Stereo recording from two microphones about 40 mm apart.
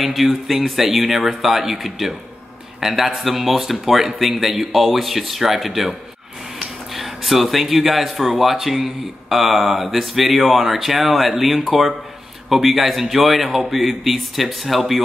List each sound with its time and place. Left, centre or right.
0.0 s speech: centre